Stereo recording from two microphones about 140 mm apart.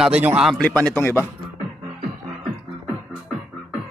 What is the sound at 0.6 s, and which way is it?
Speech, 10° left (ahead or behind).